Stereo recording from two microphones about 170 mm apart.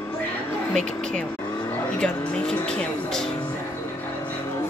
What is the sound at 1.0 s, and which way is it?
Speech, 5° left (ahead or behind).